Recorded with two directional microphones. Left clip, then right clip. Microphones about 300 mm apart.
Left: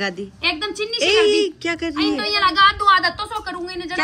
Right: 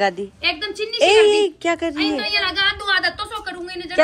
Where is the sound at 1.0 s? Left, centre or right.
Centre.